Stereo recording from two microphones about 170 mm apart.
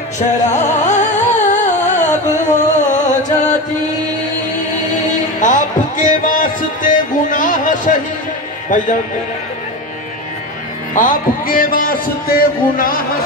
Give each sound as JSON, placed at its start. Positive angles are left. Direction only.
{"t": 0.5, "sound": "music", "side_deg": 45}
{"t": 4.7, "sound": "music", "side_deg": 45}
{"t": 8.6, "sound": "speech", "side_deg": 50}
{"t": 11.0, "sound": "a man's voice", "side_deg": 55}